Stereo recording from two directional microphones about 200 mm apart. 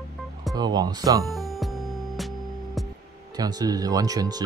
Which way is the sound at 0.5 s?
20° right (ahead or behind).